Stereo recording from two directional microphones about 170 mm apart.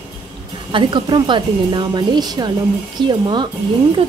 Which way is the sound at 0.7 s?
25° right (ahead or behind).